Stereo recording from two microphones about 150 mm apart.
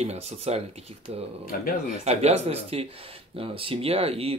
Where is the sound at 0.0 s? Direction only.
45° right (ahead or behind).